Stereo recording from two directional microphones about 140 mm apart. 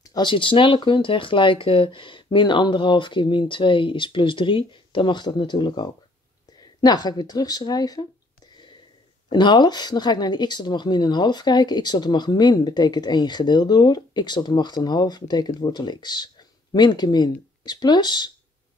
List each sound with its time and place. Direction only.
0.1 s speech: 35° left (ahead or behind)
9.3 s speech: 30° left (ahead or behind)